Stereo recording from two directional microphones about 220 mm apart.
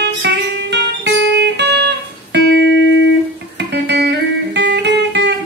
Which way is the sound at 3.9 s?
50° right (ahead or behind).